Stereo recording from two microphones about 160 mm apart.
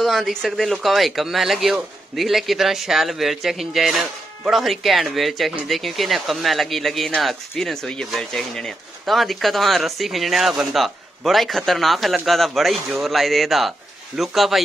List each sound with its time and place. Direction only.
0.0 s speech: centre (ahead or behind)